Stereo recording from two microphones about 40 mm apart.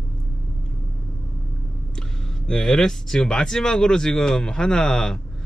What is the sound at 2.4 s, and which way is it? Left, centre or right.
Speech, centre.